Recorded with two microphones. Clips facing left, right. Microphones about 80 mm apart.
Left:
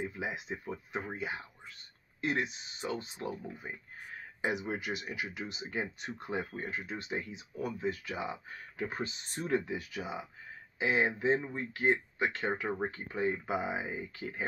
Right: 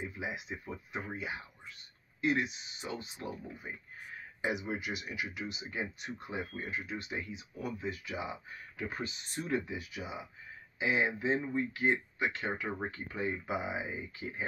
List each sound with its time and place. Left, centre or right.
0.0 s speech: left
8.8 s speech: left